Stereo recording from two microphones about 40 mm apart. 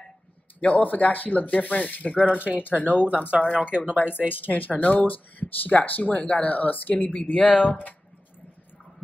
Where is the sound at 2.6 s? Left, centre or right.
Left.